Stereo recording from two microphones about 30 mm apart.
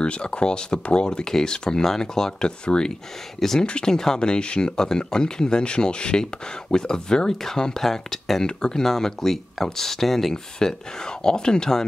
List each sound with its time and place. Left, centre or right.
0.0 s speech: left; by 2.3 s centre
2.4 s speech: left
3.3 s speech: centre
8.5 s speech: left
8.8 s speech: centre
10.3 s speech: left